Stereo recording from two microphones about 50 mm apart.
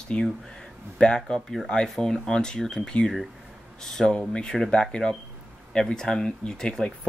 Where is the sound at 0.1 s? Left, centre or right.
Centre.